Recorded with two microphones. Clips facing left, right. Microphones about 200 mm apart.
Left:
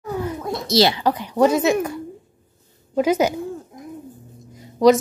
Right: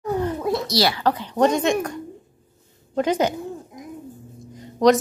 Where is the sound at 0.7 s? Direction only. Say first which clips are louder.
Left 4 dB; 25° left (ahead or behind).